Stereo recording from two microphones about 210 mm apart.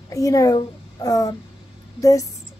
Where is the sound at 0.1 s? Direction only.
15° left (ahead or behind).